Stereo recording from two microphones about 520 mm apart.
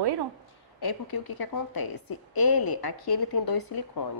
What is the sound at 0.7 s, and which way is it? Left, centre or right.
A woman's voice, left.